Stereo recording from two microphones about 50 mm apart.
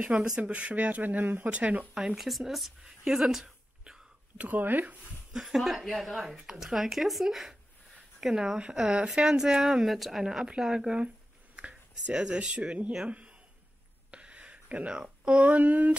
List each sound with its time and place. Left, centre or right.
0.1 s speech: centre
0.5 s speech: right
2.1 s speech: centre
3.1 s a sound: centre
4.4 s speech: right
5.3 s speech: centre
10.2 s speech: centre
14.1 s speech: right